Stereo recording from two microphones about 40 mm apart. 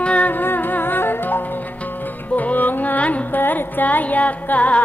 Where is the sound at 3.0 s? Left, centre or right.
Left.